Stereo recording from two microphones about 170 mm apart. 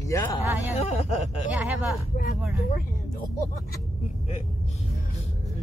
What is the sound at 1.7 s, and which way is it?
Speech, centre (ahead or behind).